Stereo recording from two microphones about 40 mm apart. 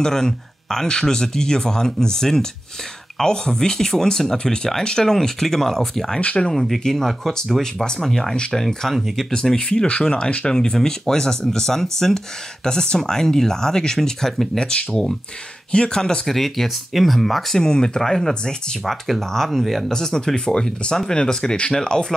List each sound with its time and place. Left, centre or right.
0.0 s speech: centre
6.2 s speech: left
6.5 s speech: centre
8.0 s speech: centre
9.3 s speech: centre
14.6 s speech: left
16.3 s speech: centre
18.9 s speech: centre
19.9 s speech: centre